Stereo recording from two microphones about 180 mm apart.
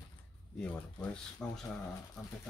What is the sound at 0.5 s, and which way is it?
Speech, 5° left (ahead or behind).